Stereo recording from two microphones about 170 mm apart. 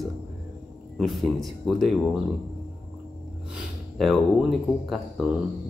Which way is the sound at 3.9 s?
Centre (ahead or behind).